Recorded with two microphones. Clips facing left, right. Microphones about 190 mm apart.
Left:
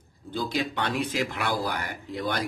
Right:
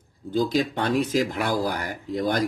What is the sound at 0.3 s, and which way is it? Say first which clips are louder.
Speech: right 6 dB; 40° right (ahead or behind).